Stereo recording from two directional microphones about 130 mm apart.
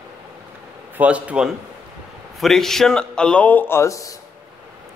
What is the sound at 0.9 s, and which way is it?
A man's voice, 10° right (ahead or behind).